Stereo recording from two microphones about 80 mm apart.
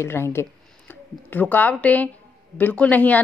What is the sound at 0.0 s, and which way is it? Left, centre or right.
Speech, left.